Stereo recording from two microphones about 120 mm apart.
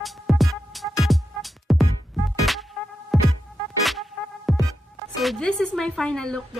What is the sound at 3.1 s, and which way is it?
Music, centre (ahead or behind).